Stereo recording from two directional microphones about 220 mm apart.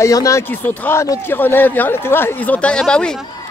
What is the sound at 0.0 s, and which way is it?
A man's voice, 15° left (ahead or behind).